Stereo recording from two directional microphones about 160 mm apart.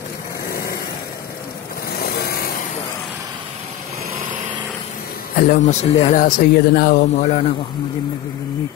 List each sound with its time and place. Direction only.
0.5 s vehicle: 70° left (ahead or behind)
2.0 s vehicle: 75° left (ahead or behind)
5.3 s speech: 55° left (ahead or behind)
6.2 s speech: 65° left (ahead or behind); by 7.5 s 50° left (ahead or behind)